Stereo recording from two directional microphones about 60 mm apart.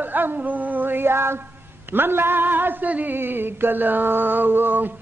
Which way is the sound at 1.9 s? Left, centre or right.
Right.